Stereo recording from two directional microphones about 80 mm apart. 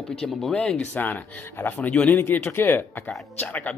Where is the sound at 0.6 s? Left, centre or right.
Centre.